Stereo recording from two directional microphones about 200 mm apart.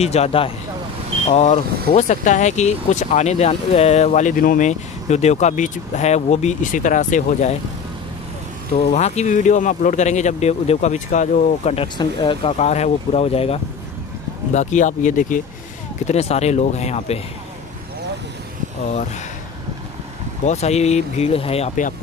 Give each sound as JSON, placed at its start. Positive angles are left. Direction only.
{"t": 0.0, "sound": "speech", "side_deg": 30}
{"t": 8.7, "sound": "speech", "side_deg": 35}
{"t": 20.4, "sound": "speech", "side_deg": 35}